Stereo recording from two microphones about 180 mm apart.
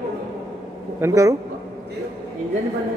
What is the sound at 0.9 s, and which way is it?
Speech, 15° right (ahead or behind).